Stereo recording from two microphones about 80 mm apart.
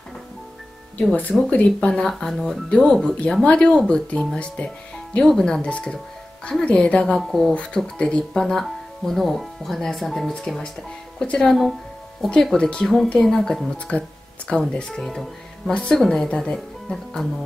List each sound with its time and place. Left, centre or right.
1.5 s a woman's voice: centre
13.7 s a woman's voice: centre